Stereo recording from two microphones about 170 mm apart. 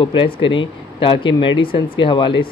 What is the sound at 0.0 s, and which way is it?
Speech, 30° left (ahead or behind).